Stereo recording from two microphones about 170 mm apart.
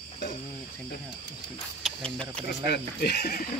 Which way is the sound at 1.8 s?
5° left (ahead or behind).